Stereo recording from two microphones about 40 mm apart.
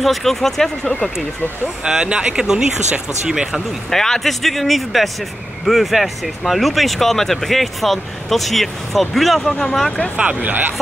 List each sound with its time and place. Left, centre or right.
0.0 s speech: centre
1.9 s speech: right
3.9 s speech: centre
10.1 s speech: right